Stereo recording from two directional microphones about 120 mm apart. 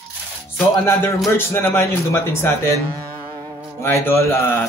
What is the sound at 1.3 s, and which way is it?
Speech, 20° left (ahead or behind).